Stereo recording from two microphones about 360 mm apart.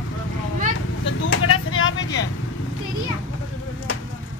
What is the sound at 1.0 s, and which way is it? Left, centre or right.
Speech, left.